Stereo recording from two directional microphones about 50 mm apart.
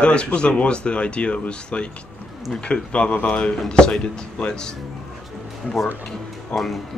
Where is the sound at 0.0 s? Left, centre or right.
Left.